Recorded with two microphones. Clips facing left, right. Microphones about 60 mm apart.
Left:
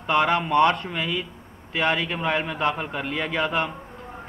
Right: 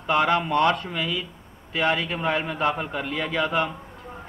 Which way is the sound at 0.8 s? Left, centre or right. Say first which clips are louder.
Left 1 dB; left.